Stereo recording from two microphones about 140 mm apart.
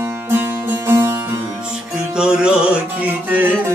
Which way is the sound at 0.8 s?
20° right (ahead or behind).